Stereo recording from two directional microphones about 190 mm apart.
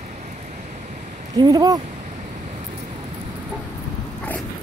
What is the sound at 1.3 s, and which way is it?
Speech, 20° right (ahead or behind).